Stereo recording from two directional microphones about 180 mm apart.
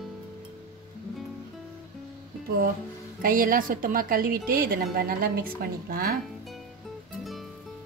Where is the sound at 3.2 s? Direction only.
50° right (ahead or behind).